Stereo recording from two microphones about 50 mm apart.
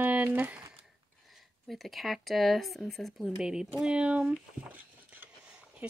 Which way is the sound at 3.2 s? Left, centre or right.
Centre.